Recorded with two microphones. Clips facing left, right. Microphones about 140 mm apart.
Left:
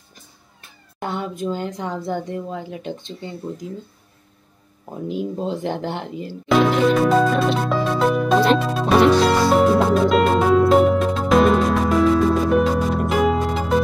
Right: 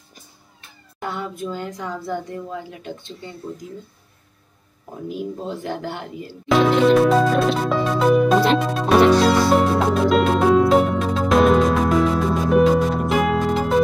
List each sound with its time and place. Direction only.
1.0 s speech: 20° left (ahead or behind)
5.0 s speech: 20° left (ahead or behind)
6.5 s music: centre (ahead or behind)